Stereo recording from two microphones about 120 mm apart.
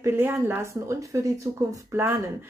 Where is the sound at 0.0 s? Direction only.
20° right (ahead or behind).